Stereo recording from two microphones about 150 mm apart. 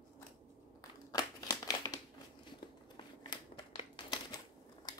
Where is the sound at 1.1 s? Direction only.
25° left (ahead or behind).